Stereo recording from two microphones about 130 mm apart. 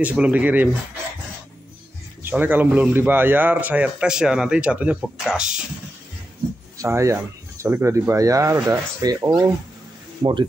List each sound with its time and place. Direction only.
0.0 s speech: 10° right (ahead or behind)
2.2 s speech: 15° right (ahead or behind)
6.8 s speech: 25° right (ahead or behind)